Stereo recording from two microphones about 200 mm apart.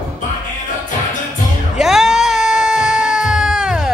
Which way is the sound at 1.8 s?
Centre (ahead or behind).